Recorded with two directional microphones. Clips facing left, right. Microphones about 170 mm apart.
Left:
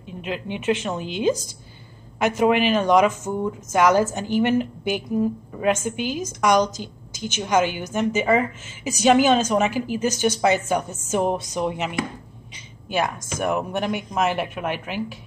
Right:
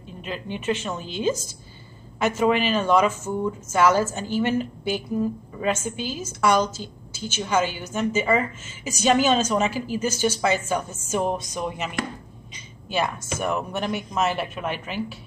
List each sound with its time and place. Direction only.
0.2 s speech: 15° left (ahead or behind)
12.8 s speech: 10° left (ahead or behind)